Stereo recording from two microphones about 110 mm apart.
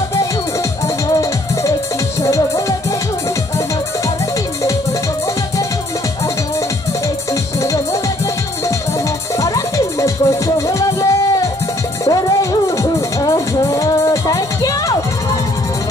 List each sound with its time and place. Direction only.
2.2 s music: 30° left (ahead or behind)
7.6 s music: 30° left (ahead or behind)
9.4 s music: 30° left (ahead or behind)